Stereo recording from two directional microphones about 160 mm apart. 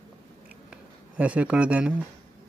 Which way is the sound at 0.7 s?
10° right (ahead or behind).